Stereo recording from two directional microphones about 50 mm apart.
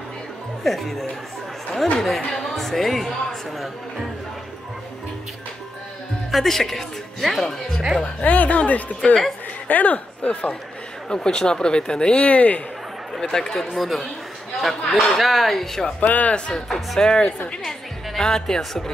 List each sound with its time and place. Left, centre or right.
0.7 s a man's voice: centre
6.3 s a man's voice: centre
8.2 s speech: left
11.1 s a man's voice: centre
13.1 s a man's voice: centre
16.1 s speech: left
16.3 s a man's voice: centre